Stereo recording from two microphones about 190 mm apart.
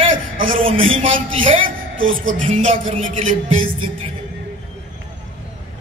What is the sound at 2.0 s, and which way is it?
Music, 90° right.